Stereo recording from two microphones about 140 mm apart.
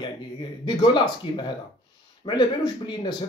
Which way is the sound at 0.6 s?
30° left (ahead or behind).